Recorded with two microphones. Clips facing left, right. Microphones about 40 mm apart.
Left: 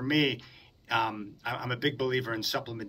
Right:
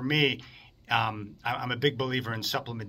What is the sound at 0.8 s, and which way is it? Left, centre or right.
Speech, centre.